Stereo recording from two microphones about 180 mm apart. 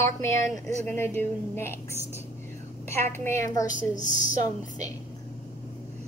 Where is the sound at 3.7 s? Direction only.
45° left (ahead or behind).